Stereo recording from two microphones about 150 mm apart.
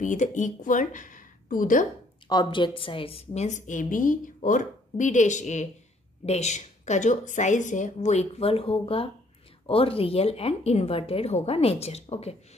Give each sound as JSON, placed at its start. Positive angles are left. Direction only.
{"t": 0.0, "sound": "speech", "side_deg": 55}
{"t": 2.2, "sound": "a woman's voice", "side_deg": 30}